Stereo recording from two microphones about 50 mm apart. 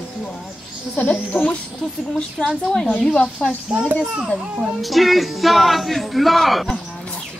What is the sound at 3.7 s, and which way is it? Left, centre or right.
Speech, centre.